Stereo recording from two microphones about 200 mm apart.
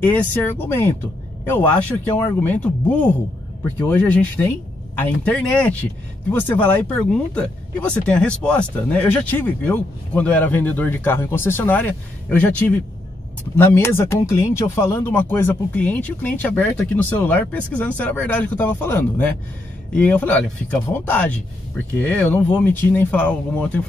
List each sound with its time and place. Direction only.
0.0 s speech: 10° left (ahead or behind)